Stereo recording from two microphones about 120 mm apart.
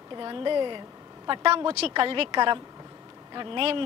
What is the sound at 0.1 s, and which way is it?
A woman's voice, 40° right (ahead or behind).